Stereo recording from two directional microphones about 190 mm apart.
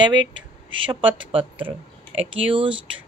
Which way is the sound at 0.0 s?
25° right (ahead or behind).